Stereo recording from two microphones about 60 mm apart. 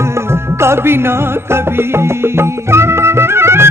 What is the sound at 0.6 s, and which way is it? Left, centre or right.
Music, right.